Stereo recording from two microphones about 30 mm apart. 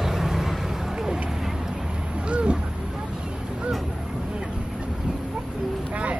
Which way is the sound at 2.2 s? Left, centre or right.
Right.